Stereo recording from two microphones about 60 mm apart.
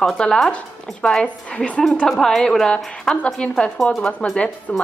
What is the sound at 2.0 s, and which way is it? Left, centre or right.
A woman's voice, centre.